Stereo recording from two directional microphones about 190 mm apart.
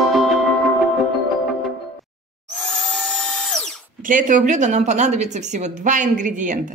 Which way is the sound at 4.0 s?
45° right (ahead or behind).